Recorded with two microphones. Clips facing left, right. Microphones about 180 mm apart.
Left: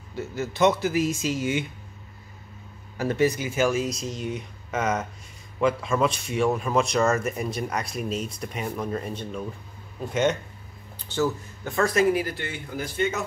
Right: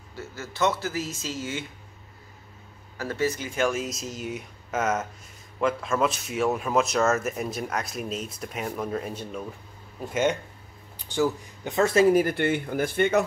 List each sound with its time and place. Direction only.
0.1 s speech: 20° left (ahead or behind)
3.0 s speech: 20° left (ahead or behind); by 9.4 s 5° right (ahead or behind)
11.0 s speech: 15° right (ahead or behind)
12.1 s speech: 50° right (ahead or behind)